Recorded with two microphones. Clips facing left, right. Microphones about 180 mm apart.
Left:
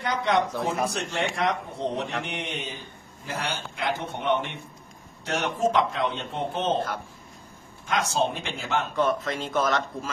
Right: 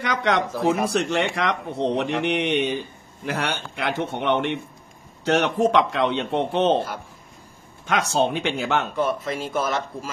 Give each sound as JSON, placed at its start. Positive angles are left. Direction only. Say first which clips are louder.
{"t": 0.0, "sound": "speech", "louder": "right 2 dB", "side_deg": -85}
{"t": 0.8, "sound": "a man's voice", "louder": "right 6 dB", "side_deg": -75}
{"t": 3.3, "sound": "a man's voice", "louder": "right 5 dB", "side_deg": -85}
{"t": 7.8, "sound": "a man's voice", "louder": "right 4 dB", "side_deg": -70}
{"t": 8.9, "sound": "speech", "louder": "right 1 dB", "side_deg": -10}